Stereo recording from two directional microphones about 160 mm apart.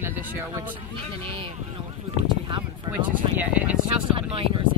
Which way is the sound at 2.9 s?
25° right (ahead or behind).